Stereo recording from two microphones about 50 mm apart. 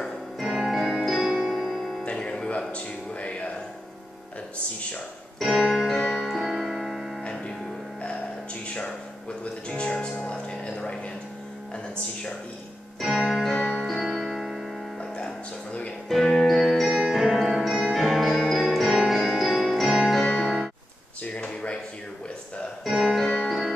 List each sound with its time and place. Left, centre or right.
0.0 s music: centre
2.0 s music: left
5.4 s keyboard: centre
5.8 s music: centre
7.2 s music: centre
9.4 s music: left
13.1 s music: centre
13.6 s music: centre
14.1 s music: centre
16.1 s music: centre
22.8 s music: centre